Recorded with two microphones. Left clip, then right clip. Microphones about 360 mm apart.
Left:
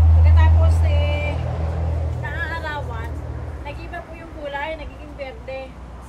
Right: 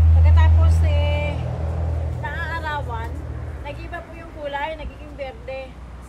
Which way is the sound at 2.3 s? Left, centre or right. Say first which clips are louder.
Even; centre.